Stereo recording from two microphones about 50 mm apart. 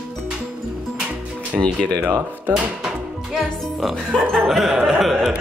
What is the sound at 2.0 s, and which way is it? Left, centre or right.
Speech, right.